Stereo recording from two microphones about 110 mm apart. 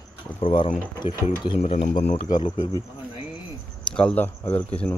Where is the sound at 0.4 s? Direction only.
55° left (ahead or behind).